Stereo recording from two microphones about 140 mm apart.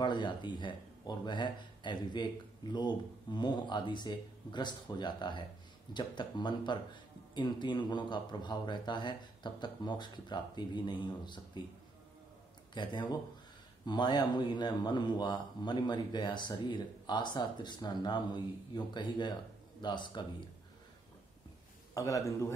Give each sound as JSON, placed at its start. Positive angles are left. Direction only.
{"t": 0.0, "sound": "speech", "side_deg": 35}
{"t": 12.7, "sound": "speech", "side_deg": 35}
{"t": 21.9, "sound": "a man's voice", "side_deg": 25}